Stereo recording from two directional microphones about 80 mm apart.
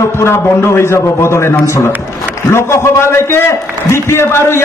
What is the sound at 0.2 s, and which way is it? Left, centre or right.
A man's voice, left.